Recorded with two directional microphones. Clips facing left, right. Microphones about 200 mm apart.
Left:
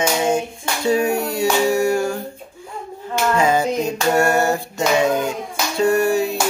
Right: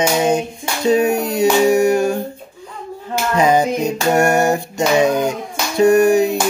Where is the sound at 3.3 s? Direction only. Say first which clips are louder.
Right 4 dB; 15° right (ahead or behind).